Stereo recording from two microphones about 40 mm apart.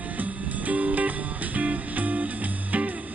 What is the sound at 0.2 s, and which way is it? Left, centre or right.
Music, right.